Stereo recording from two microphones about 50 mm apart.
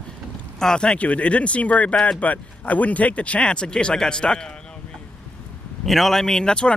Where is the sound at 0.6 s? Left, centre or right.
Centre.